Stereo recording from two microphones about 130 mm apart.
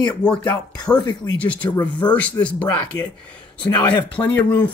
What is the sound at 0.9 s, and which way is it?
Speech, 35° left (ahead or behind).